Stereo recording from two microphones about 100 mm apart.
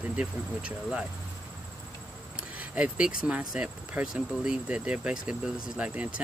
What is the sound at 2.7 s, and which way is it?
Speech, 10° right (ahead or behind).